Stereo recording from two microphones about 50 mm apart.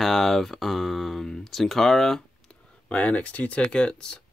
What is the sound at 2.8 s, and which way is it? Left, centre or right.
Speech, left.